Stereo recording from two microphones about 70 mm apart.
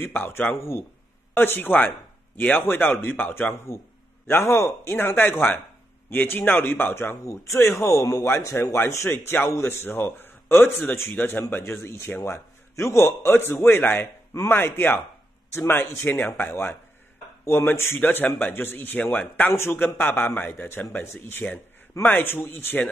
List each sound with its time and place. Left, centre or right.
0.0 s a man's voice: left
7.2 s a man's voice: left
18.0 s a man's voice: left